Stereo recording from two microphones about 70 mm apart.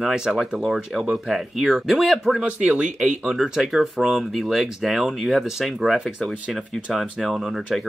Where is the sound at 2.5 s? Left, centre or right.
Centre.